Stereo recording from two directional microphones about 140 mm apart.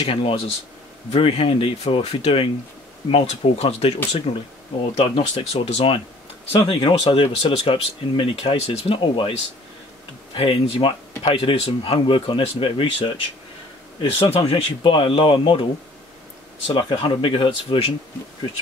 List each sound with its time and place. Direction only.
0.0 s speech: 40° left (ahead or behind)
14.2 s speech: 40° left (ahead or behind)